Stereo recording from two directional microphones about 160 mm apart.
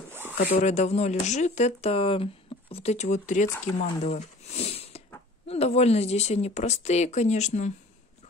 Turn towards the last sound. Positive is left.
turn(degrees=45)  # may be behind; listen again after turning